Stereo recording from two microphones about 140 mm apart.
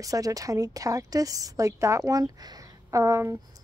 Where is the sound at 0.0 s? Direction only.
25° right (ahead or behind).